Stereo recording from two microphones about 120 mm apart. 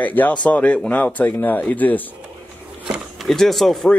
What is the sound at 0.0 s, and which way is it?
Speech, 15° left (ahead or behind).